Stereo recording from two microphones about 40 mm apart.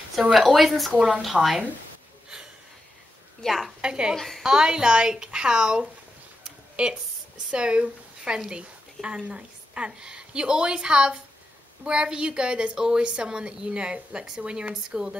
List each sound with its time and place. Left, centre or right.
0.3 s a woman's voice: centre
0.9 s a woman's voice: right
1.2 s a woman's voice: centre
3.4 s a woman's voice: centre
3.8 s a woman's voice: right
6.4 s a sound: right
9.3 s a woman's voice: right